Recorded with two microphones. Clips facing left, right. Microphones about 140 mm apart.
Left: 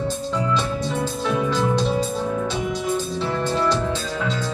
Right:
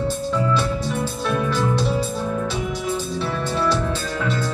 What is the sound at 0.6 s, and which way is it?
Music, 20° left (ahead or behind).